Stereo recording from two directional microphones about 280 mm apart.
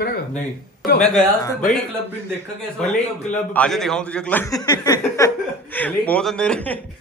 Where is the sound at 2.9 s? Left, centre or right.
Centre.